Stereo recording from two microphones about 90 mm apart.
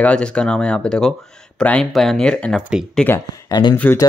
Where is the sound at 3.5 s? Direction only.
55° left (ahead or behind).